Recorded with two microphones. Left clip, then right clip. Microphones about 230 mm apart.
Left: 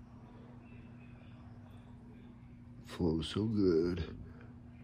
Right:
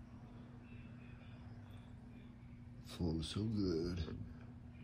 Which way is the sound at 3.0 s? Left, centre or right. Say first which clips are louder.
Left 8 dB; left.